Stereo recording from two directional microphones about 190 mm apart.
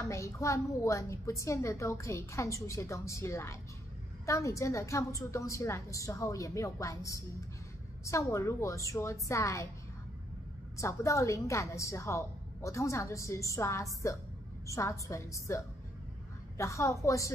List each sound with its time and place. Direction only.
0.0 s a woman's voice: 15° left (ahead or behind)
10.8 s a woman's voice: 15° left (ahead or behind)